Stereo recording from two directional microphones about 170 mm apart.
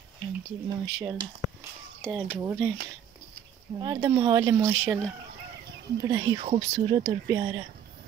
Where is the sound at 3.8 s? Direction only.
25° right (ahead or behind).